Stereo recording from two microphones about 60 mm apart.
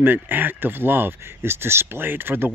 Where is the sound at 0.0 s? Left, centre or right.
Right.